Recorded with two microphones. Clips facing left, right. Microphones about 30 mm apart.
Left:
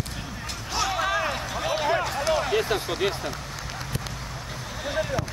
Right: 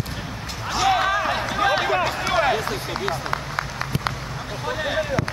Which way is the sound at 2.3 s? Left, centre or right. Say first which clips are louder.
Right 4 dB; right.